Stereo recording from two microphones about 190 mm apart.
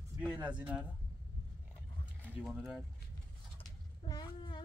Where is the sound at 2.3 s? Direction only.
5° right (ahead or behind).